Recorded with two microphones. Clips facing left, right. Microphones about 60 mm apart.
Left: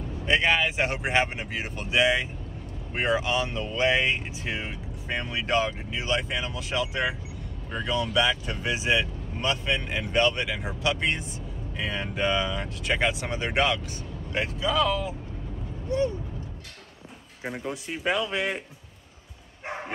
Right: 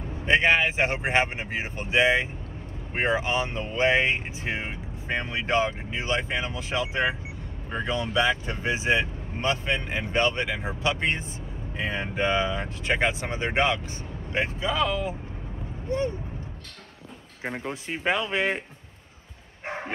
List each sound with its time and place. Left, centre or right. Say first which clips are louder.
0.1 s speech: right 2 dB; right
17.4 s speech: right 1 dB; right
19.6 s bow-wow: right 1 dB; right